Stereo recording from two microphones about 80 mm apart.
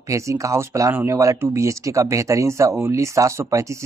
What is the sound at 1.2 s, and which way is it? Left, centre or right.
A man's voice, right.